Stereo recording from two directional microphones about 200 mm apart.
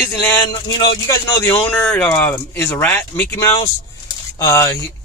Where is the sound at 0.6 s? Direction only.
20° left (ahead or behind).